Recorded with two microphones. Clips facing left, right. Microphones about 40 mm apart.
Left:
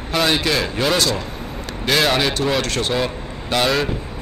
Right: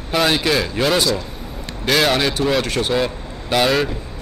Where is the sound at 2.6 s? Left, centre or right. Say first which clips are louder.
Right 1 dB; centre.